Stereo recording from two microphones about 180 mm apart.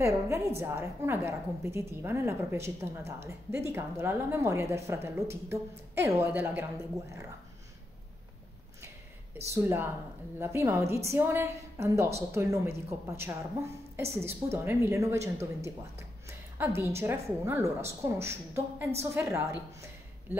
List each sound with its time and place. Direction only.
0.6 s a woman's voice: 15° right (ahead or behind)
9.5 s a woman's voice: 15° right (ahead or behind)